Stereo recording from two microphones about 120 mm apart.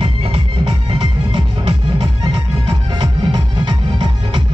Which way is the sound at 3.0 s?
40° right (ahead or behind).